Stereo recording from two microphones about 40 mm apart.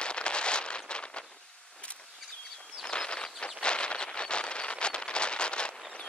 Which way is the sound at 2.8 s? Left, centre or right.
Left.